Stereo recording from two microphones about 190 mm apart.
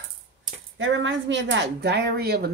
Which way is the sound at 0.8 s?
80° right.